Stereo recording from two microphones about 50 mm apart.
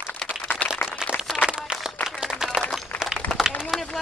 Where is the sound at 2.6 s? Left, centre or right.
Centre.